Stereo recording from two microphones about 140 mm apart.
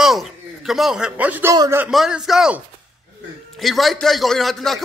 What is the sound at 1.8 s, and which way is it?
A man's voice, 5° right (ahead or behind).